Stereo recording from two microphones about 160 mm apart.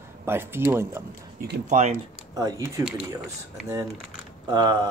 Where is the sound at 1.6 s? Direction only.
50° right (ahead or behind).